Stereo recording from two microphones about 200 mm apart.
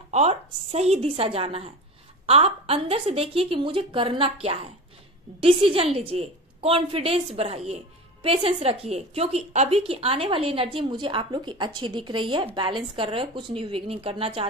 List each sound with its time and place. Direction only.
0.1 s a woman's voice: 30° right (ahead or behind)